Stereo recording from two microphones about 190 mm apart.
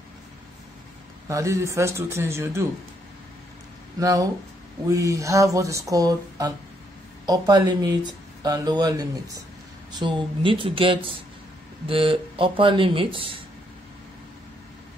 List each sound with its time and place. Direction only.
1.3 s speech: 15° right (ahead or behind)
4.0 s speech: 20° right (ahead or behind)